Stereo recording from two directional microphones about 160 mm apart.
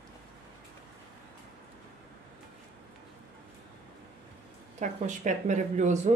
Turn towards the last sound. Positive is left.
turn(degrees=-50)  # may be behind; listen again after turning